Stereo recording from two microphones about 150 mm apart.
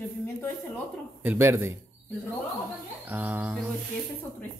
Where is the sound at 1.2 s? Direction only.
15° right (ahead or behind).